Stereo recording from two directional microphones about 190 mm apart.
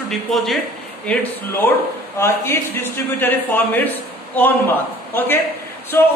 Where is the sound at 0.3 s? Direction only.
Centre (ahead or behind).